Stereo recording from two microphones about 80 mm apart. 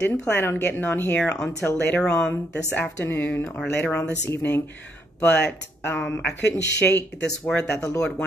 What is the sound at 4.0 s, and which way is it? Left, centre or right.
Speech, left.